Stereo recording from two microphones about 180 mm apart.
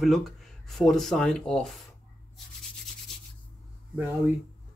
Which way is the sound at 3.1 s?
Centre (ahead or behind).